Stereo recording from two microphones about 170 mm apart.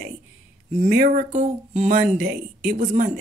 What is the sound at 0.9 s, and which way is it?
Speech, 55° right (ahead or behind).